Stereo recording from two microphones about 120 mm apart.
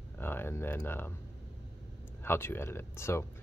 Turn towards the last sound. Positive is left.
turn(degrees=20)  # may be behind; listen again after turning